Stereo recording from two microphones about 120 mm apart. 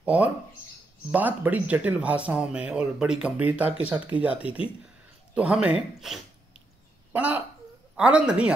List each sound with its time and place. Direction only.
0.0 s speech: 10° right (ahead or behind)
7.1 s speech: 15° right (ahead or behind)